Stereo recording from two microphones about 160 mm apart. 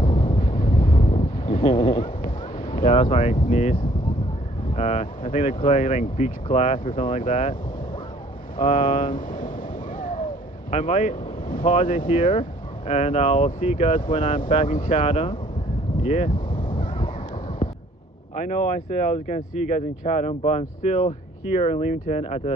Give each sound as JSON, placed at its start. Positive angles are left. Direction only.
{"t": 0.1, "sound": "wind noise", "side_deg": 30}
{"t": 0.8, "sound": "wind noise", "side_deg": 55}
{"t": 1.1, "sound": "a sound", "side_deg": 35}
{"t": 2.8, "sound": "speech", "side_deg": 50}
{"t": 3.1, "sound": "speech", "side_deg": 35}
{"t": 3.3, "sound": "speech", "side_deg": 50}
{"t": 7.0, "sound": "speech", "side_deg": 50}
{"t": 8.6, "sound": "speech", "side_deg": 35}
{"t": 9.1, "sound": "speech", "side_deg": 55}
{"t": 9.9, "sound": "a sound", "side_deg": 60}
{"t": 10.7, "sound": "speech", "side_deg": 45}
{"t": 14.7, "sound": "speech", "side_deg": 50}
{"t": 16.5, "sound": "wind noise", "side_deg": 30}
{"t": 18.3, "sound": "speech", "side_deg": 50}